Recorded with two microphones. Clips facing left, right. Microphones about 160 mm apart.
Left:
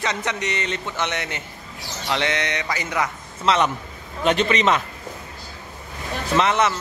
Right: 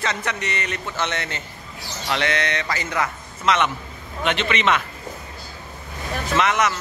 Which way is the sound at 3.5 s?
35° left (ahead or behind).